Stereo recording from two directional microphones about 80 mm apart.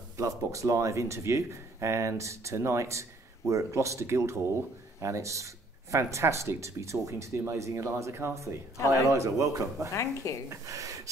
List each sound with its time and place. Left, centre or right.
0.2 s speech: right
8.7 s speech: left
9.1 s speech: right
9.9 s speech: left
10.5 s speech: right